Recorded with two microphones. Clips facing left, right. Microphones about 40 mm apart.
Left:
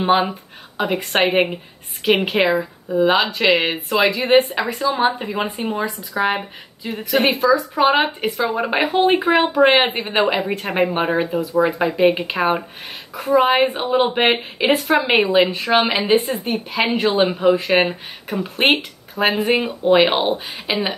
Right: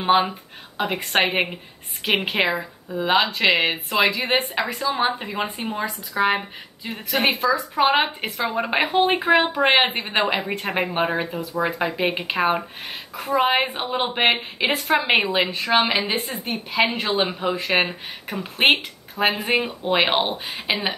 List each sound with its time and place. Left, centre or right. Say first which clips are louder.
0.0 s speech: left 2 dB; centre